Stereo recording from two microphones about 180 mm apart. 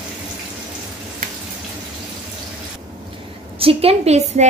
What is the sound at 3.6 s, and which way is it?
Speech, 35° right (ahead or behind).